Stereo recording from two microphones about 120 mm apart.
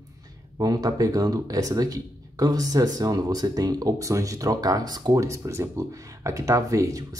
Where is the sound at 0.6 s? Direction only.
30° right (ahead or behind).